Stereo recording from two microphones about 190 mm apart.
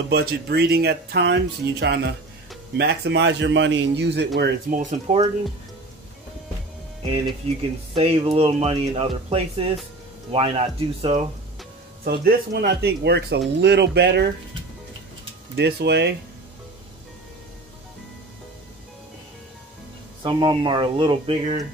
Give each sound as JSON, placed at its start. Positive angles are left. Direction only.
{"t": 0.1, "sound": "speech", "side_deg": -55}
{"t": 4.7, "sound": "speech", "side_deg": -40}
{"t": 7.4, "sound": "speech", "side_deg": -30}
{"t": 12.0, "sound": "speech", "side_deg": -55}
{"t": 15.5, "sound": "speech", "side_deg": -60}
{"t": 20.2, "sound": "speech", "side_deg": -25}